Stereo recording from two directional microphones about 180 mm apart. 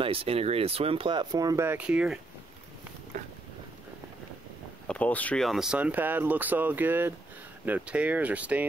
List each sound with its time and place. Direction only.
0.0 s speech: 30° right (ahead or behind); by 2.1 s 5° right (ahead or behind)
4.8 s speech: 10° left (ahead or behind); by 8.6 s 10° right (ahead or behind)